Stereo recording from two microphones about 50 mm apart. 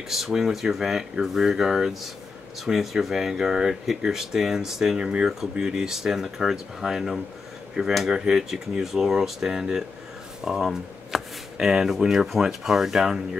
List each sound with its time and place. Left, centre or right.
0.1 s speech: centre
4.9 s speech: right
5.4 s speech: centre
10.4 s shuffling cards: centre
11.5 s speech: centre